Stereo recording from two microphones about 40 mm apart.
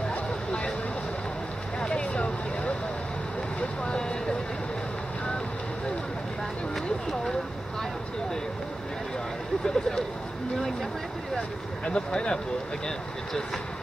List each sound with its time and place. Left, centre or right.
0.1 s vehicle: left
1.8 s vehicle: left
3.8 s vehicle: left
6.7 s a sound: centre
9.7 s a sound: centre
11.8 s speech: left